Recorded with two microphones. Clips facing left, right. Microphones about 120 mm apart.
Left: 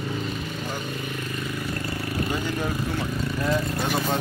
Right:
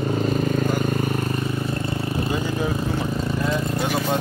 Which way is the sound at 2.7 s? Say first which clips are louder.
Right 3 dB; 25° right (ahead or behind).